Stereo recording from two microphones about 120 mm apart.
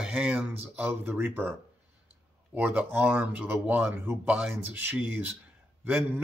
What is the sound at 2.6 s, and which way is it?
Speech, 15° right (ahead or behind).